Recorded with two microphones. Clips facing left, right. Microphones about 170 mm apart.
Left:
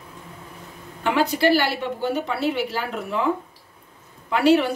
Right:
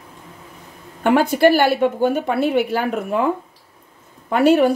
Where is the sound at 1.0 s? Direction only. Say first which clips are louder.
Right 6 dB; 50° right (ahead or behind).